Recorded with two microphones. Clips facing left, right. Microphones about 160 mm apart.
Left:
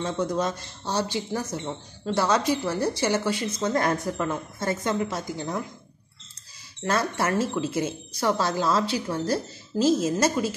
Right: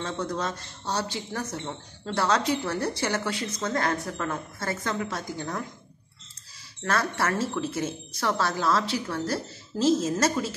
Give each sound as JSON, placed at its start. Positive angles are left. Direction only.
{"t": 0.0, "sound": "a woman's voice", "side_deg": 15}
{"t": 6.8, "sound": "a woman's voice", "side_deg": 15}